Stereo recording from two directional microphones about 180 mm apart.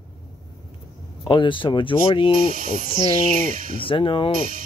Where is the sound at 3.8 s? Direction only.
30° left (ahead or behind).